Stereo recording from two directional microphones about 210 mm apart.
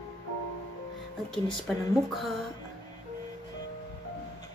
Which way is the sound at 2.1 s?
Centre (ahead or behind).